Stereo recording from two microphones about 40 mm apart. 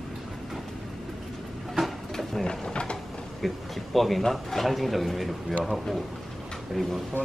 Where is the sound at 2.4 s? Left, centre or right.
Left.